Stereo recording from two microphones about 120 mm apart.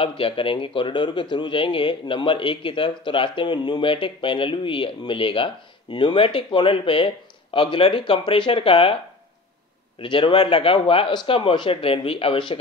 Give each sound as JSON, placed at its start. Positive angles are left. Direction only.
{"t": 0.0, "sound": "speech", "side_deg": 50}
{"t": 9.9, "sound": "speech", "side_deg": 45}